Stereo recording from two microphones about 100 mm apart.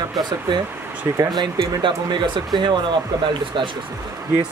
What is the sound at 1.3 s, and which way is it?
Speech, 55° right (ahead or behind).